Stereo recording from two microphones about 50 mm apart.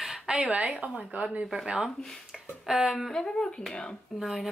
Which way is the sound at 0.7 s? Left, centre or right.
Right.